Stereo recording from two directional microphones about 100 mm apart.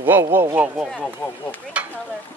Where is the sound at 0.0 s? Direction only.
20° right (ahead or behind).